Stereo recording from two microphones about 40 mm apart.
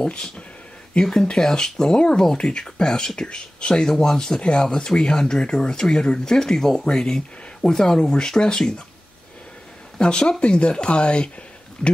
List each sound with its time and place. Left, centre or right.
0.0 s speech: left
9.9 s speech: left